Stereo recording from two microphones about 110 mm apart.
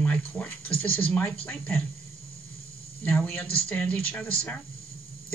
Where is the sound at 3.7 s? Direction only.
15° left (ahead or behind).